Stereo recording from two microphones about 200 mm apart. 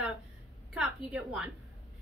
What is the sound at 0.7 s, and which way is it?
Speech, 5° right (ahead or behind).